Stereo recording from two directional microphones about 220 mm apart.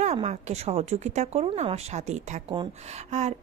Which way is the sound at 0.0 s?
30° right (ahead or behind).